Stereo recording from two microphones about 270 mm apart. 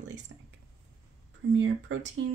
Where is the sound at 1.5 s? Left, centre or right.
Right.